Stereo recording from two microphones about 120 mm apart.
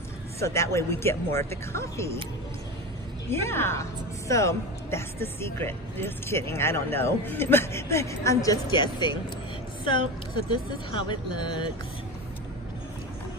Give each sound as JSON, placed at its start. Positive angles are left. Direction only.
{"t": 0.4, "sound": "speech", "side_deg": 25}
{"t": 3.3, "sound": "speech", "side_deg": 20}
{"t": 8.7, "sound": "speech", "side_deg": 40}
{"t": 11.0, "sound": "speech", "side_deg": 40}